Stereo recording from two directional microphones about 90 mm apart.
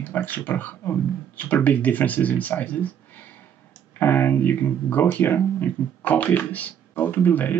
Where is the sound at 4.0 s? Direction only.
20° left (ahead or behind).